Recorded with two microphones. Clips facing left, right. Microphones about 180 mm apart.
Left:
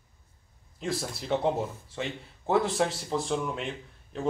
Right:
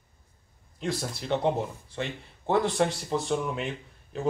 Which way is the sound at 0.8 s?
Centre (ahead or behind).